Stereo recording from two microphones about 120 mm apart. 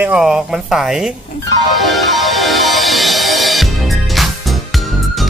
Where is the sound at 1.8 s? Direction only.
Centre (ahead or behind).